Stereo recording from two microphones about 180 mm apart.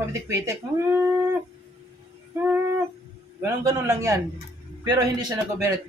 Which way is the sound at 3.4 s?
15° right (ahead or behind).